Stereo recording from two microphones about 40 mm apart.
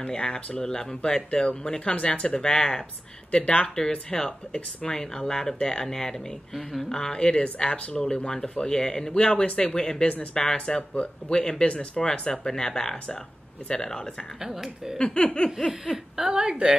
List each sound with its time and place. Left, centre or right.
0.0 s speech: centre
6.5 s speech: centre
6.9 s speech: centre
12.0 s speech: centre
14.4 s speech: centre
15.0 s speech: left
16.2 s a woman's voice: centre